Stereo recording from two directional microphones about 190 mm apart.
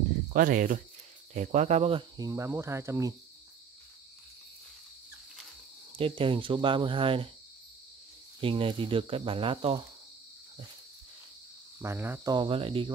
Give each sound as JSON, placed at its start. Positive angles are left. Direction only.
{"t": 0.3, "sound": "speech", "side_deg": -45}
{"t": 1.3, "sound": "cricket", "side_deg": -40}
{"t": 5.9, "sound": "cricket", "side_deg": -25}
{"t": 8.4, "sound": "cricket", "side_deg": -30}
{"t": 11.8, "sound": "cricket", "side_deg": -10}
{"t": 12.4, "sound": "cricket", "side_deg": -30}